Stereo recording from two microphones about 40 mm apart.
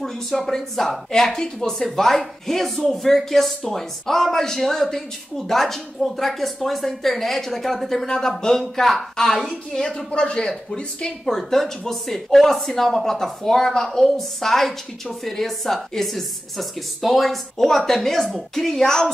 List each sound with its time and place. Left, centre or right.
0.0 s a woman's voice: centre
11.2 s a woman's voice: centre